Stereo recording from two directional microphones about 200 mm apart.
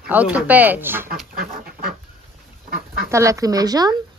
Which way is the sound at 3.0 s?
15° right (ahead or behind).